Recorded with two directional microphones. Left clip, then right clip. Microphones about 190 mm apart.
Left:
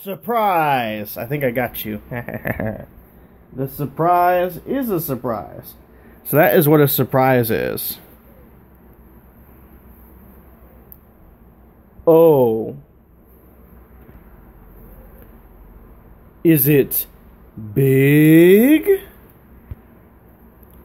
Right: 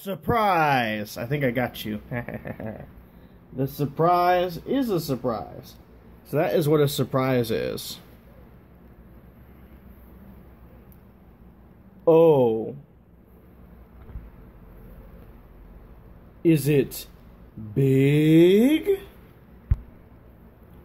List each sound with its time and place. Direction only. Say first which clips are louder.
0.0 s speech: left 4 dB; 10° right (ahead or behind); by 2.4 s 10° left (ahead or behind)
3.5 s speech: left 3 dB; centre (ahead or behind); by 5.7 s 25° left (ahead or behind)
6.3 s speech: left 8 dB; 35° left (ahead or behind)
12.0 s speech: left 5 dB; 20° left (ahead or behind)
16.4 s speech: left 6 dB; 25° left (ahead or behind)